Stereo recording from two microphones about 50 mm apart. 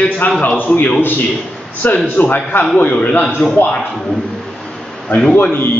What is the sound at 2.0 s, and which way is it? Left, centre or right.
A man's voice, left.